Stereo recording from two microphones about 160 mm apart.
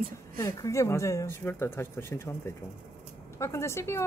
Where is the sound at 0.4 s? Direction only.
20° left (ahead or behind).